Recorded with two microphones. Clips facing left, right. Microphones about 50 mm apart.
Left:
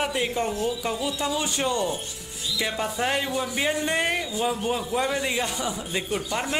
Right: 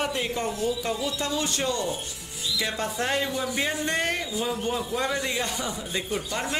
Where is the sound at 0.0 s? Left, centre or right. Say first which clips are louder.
Left 2 dB; centre.